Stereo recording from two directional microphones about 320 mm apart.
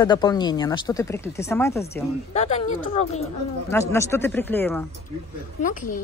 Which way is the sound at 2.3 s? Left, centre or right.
Centre.